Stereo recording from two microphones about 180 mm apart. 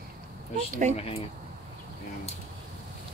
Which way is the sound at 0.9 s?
35° left (ahead or behind).